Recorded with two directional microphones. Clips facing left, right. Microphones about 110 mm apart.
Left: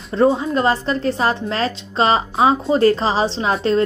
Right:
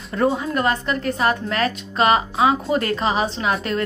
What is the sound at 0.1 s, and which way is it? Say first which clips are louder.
A woman's voice: left 4 dB; 30° left (ahead or behind).